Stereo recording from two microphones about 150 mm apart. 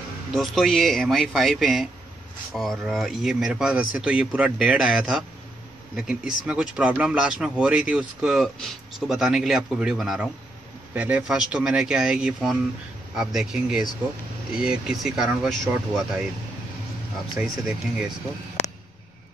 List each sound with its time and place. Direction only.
0.3 s speech: centre (ahead or behind)
17.4 s speech: 5° right (ahead or behind)